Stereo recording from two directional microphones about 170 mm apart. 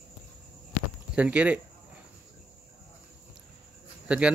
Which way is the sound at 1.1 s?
10° right (ahead or behind).